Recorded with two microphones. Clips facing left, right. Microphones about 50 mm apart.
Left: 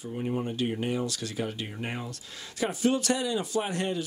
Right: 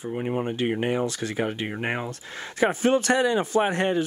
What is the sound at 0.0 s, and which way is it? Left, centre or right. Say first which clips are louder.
Speech: right 4 dB; right.